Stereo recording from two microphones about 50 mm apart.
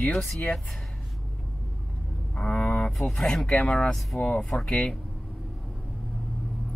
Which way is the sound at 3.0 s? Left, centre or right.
Centre.